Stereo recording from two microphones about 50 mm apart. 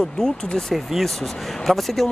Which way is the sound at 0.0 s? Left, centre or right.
Centre.